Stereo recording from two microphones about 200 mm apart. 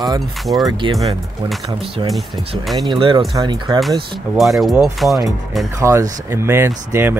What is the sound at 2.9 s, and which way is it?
Speech, 25° right (ahead or behind).